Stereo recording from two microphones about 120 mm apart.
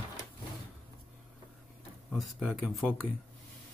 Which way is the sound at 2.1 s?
Centre (ahead or behind).